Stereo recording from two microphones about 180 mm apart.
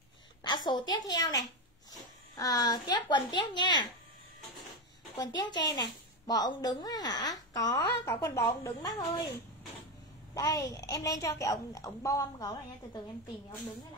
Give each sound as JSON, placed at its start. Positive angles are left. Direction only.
{"t": 0.4, "sound": "a woman's voice", "side_deg": 25}
{"t": 5.1, "sound": "a woman's voice", "side_deg": 20}
{"t": 10.3, "sound": "a woman's voice", "side_deg": 20}